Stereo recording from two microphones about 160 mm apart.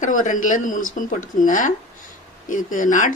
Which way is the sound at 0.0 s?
55° left (ahead or behind).